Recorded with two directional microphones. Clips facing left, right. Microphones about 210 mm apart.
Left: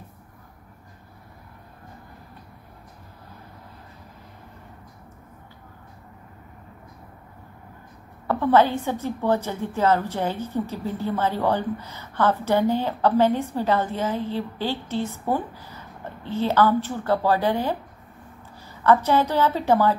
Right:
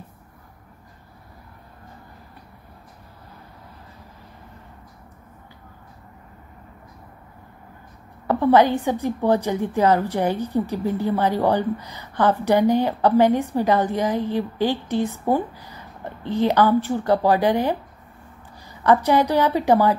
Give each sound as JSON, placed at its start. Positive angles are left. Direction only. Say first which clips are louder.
{"t": 8.3, "sound": "a woman's voice", "louder": "right 3 dB", "side_deg": -15}